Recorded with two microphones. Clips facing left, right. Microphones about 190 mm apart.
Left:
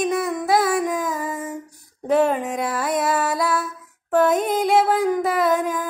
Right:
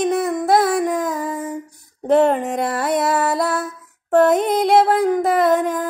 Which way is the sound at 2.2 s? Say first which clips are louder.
Right 2 dB; 65° right (ahead or behind).